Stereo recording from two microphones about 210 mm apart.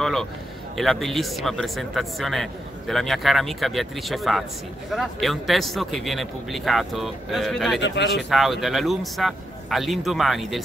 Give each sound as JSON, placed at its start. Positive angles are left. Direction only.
{"t": 0.0, "sound": "a man's voice", "side_deg": 0}
{"t": 7.8, "sound": "speech", "side_deg": 55}
{"t": 8.2, "sound": "speech", "side_deg": 0}